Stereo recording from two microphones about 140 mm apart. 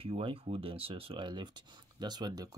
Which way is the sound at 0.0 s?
40° right (ahead or behind).